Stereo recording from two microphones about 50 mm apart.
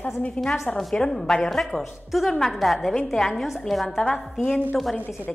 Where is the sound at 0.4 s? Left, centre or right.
Left.